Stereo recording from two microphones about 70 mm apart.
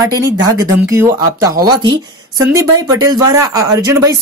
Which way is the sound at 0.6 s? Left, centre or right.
Right.